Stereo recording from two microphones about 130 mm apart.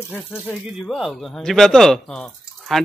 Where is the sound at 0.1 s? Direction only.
15° left (ahead or behind).